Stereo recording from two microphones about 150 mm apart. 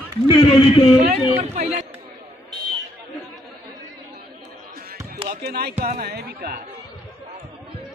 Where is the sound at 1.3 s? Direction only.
45° right (ahead or behind).